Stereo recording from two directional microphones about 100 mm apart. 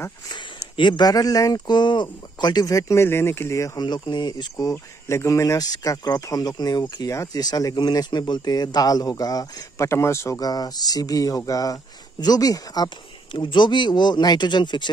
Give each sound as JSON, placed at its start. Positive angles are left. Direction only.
{"t": 0.7, "sound": "speech", "side_deg": 50}
{"t": 3.8, "sound": "speech", "side_deg": 45}
{"t": 13.3, "sound": "speech", "side_deg": 55}